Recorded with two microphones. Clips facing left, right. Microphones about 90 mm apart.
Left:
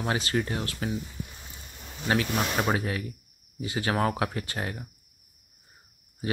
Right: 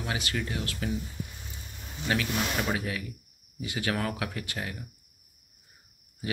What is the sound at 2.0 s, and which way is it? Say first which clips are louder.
Speech: left 3 dB; 35° left (ahead or behind).